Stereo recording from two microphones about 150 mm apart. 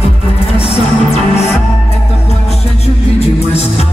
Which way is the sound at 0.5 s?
45° left (ahead or behind).